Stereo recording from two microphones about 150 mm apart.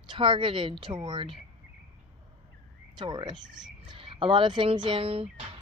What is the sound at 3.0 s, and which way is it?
Speech, 30° right (ahead or behind).